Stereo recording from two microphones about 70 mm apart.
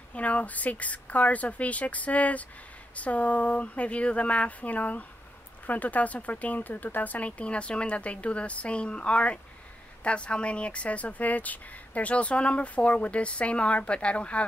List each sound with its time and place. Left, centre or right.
0.1 s speech: left